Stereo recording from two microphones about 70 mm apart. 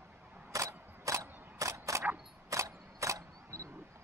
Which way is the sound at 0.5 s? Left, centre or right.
Right.